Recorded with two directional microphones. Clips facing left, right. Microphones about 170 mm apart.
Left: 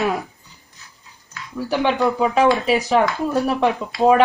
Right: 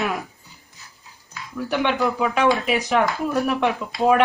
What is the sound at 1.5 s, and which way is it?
Speech, 35° left (ahead or behind).